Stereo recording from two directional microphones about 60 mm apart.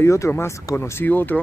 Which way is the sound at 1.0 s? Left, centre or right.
Left.